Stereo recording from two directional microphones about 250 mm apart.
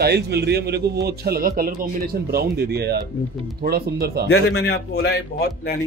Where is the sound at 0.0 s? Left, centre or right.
Right.